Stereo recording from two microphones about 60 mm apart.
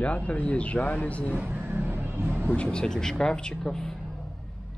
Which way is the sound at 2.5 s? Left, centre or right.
Centre.